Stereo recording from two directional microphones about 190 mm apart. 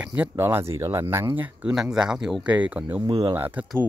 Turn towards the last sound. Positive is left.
turn(degrees=-10)  # may be behind; listen again after turning